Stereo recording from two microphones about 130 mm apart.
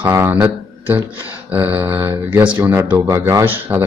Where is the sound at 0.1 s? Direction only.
15° right (ahead or behind).